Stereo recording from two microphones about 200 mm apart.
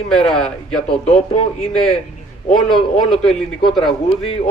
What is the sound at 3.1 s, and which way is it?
Speech, centre (ahead or behind).